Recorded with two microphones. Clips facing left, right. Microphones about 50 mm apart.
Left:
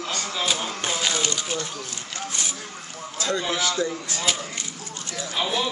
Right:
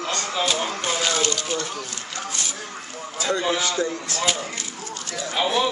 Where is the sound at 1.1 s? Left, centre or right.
Centre.